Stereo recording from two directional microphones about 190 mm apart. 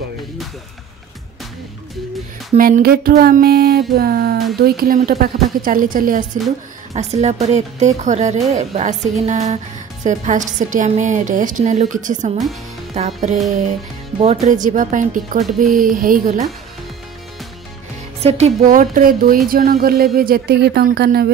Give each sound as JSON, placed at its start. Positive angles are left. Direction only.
{"t": 2.5, "sound": "speech", "side_deg": -45}
{"t": 6.9, "sound": "a woman's voice", "side_deg": -35}
{"t": 18.2, "sound": "speech", "side_deg": -40}